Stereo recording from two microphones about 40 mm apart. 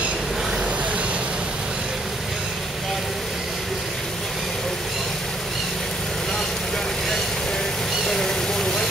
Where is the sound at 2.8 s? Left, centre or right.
Centre.